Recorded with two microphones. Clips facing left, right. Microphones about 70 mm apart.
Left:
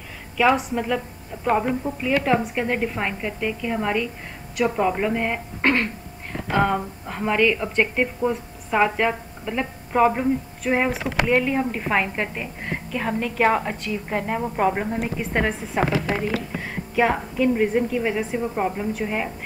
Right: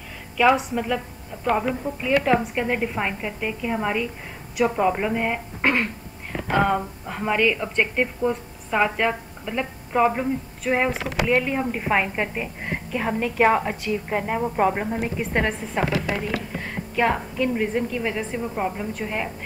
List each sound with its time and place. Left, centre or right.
0.4 s a woman's voice: centre
10.9 s speech: right
11.2 s a woman's voice: centre